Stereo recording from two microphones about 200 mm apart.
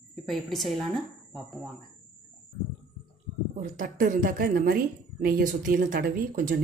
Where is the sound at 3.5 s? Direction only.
40° right (ahead or behind).